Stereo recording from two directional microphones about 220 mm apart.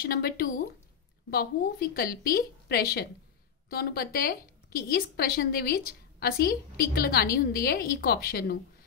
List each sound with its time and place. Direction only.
0.0 s a woman's voice: 45° left (ahead or behind)